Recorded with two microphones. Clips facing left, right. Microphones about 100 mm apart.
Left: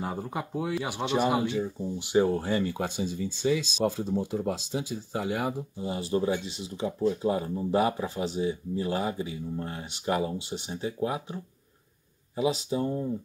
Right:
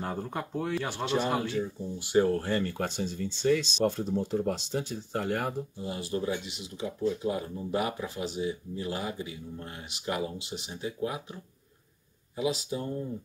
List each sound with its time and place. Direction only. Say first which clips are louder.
0.0 s speech: left 1 dB; 10° left (ahead or behind)
5.8 s speech: left 8 dB; 25° left (ahead or behind)
12.4 s speech: left 4 dB; 25° left (ahead or behind)